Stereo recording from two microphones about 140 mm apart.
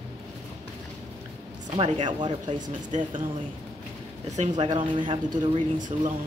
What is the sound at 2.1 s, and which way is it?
Speech, 35° right (ahead or behind).